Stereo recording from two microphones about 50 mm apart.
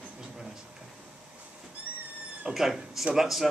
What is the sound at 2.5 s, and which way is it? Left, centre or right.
Speech, centre.